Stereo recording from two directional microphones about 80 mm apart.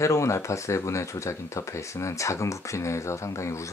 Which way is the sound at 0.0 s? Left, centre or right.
Left.